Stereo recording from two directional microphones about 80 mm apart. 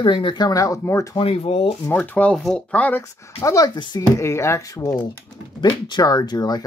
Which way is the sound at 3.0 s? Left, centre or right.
Left.